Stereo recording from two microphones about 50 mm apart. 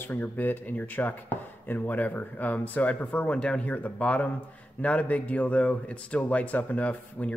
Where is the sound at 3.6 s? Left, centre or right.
Left.